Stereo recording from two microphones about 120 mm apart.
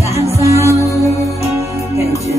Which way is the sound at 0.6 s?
25° left (ahead or behind).